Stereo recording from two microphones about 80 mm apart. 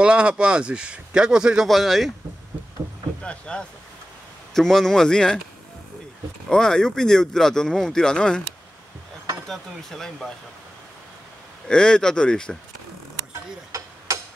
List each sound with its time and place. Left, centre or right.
0.0 s speech: centre
3.2 s speech: centre
6.5 s speech: centre
9.5 s speech: centre
11.6 s speech: centre
13.7 s a sound: right